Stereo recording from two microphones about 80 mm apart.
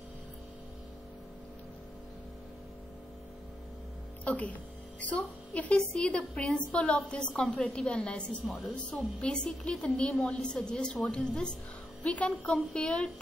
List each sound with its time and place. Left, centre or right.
4.2 s a woman's voice: centre